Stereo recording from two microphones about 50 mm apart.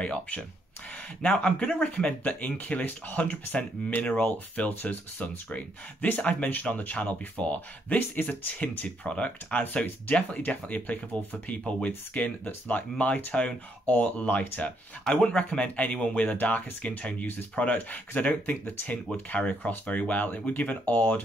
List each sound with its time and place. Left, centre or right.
0.0 s speech: left
15.0 s speech: left